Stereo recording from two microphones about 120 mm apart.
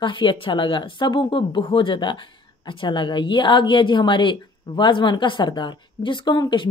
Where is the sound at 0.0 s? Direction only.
45° left (ahead or behind).